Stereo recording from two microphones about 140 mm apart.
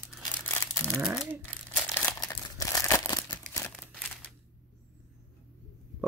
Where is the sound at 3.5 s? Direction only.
15° left (ahead or behind).